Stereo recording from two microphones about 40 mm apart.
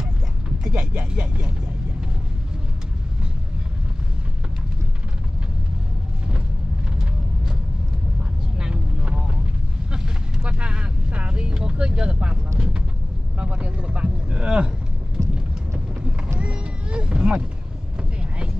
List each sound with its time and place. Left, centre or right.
0.7 s speech: right
1.1 s speech: right
8.5 s vehicle: centre
10.4 s vehicle: right
11.6 s speech: right
16.3 s speech: right